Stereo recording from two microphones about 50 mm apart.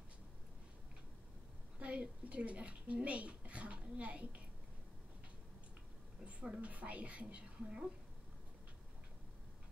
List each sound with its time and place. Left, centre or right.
1.8 s speech: right
6.2 s a woman's voice: right